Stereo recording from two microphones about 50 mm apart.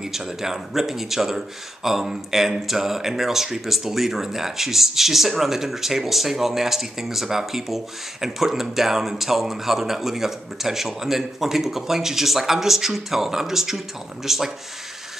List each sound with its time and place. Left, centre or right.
0.0 s speech: centre